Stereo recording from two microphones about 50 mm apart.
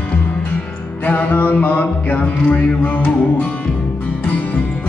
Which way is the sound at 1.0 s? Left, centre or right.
Left.